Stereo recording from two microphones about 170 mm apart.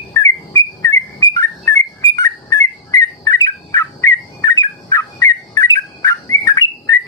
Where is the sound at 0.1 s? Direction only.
20° left (ahead or behind).